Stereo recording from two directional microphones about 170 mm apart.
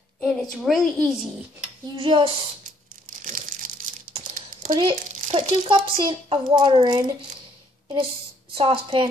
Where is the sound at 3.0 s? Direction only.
55° right (ahead or behind).